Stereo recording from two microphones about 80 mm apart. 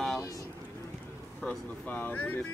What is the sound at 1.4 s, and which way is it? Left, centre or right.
Speech, centre.